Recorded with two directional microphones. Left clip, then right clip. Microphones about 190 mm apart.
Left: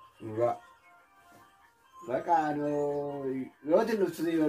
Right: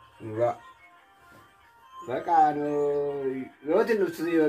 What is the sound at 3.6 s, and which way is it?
Speech, 5° left (ahead or behind).